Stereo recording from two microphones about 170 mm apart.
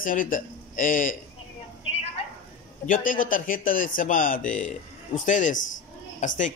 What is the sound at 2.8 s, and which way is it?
Speech, 55° left (ahead or behind).